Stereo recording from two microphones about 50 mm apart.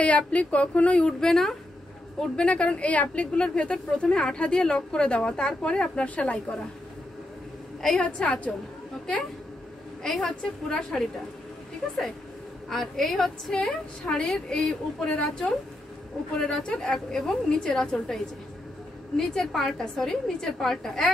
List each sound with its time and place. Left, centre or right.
0.0 s a woman's voice: left
1.2 s a woman's voice: centre
2.1 s a woman's voice: left
3.3 s a woman's voice: centre
8.0 s a woman's voice: left
10.0 s a woman's voice: centre
12.6 s a woman's voice: centre